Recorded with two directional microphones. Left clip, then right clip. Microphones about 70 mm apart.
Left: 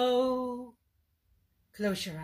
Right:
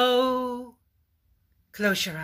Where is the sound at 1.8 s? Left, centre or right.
Left.